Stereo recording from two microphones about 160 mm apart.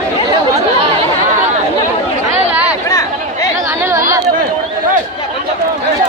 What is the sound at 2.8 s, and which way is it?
Chatter, 20° left (ahead or behind).